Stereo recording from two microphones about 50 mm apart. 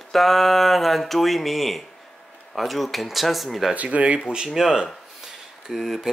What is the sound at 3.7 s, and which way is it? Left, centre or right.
Speech, right.